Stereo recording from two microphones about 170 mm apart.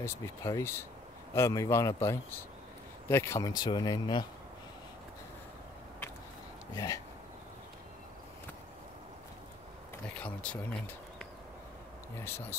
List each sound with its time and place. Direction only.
0.0 s a man's voice: 15° left (ahead or behind)
6.7 s speech: 20° left (ahead or behind)
10.0 s a man's voice: 5° left (ahead or behind)
12.3 s a man's voice: 15° left (ahead or behind)